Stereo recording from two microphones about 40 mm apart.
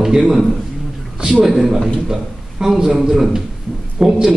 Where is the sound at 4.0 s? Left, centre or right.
Centre.